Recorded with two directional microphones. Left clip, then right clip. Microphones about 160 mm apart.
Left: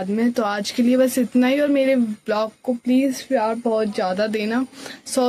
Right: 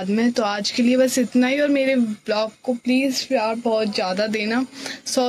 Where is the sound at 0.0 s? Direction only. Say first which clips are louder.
Even; 5° left (ahead or behind); by 4.1 s 25° left (ahead or behind).